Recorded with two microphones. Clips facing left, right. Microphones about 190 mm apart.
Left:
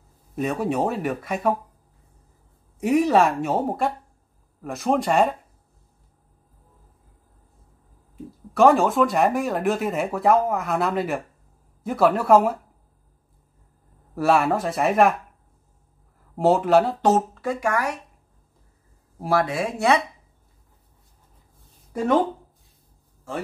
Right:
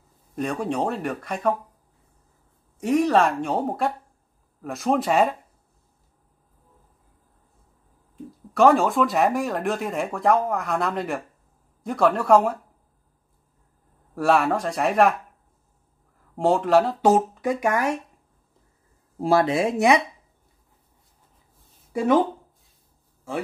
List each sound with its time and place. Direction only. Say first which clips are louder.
0.4 s speech: left 2 dB; 5° left (ahead or behind)
2.8 s speech: left 1 dB; 10° left (ahead or behind)
8.5 s speech: left 1 dB; centre (ahead or behind)
14.1 s speech: left 1 dB; centre (ahead or behind)
16.3 s speech: left 1 dB; 5° left (ahead or behind)
17.0 s speech: right 1 dB; 15° right (ahead or behind)
19.1 s speech: right 3 dB; 25° right (ahead or behind)
21.9 s speech: right 1 dB; 5° right (ahead or behind)